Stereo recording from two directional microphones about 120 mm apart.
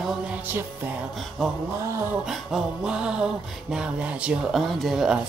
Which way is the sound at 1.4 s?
Centre (ahead or behind).